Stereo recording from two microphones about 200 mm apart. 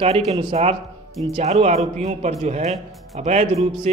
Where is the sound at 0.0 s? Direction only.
30° right (ahead or behind).